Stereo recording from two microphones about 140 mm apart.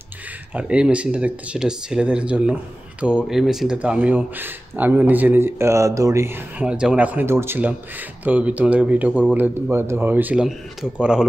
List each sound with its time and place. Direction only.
0.6 s speech: 5° right (ahead or behind)
6.6 s speech: 5° right (ahead or behind)